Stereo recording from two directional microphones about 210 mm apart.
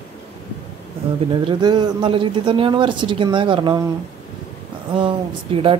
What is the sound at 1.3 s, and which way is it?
A woman's voice, 20° right (ahead or behind).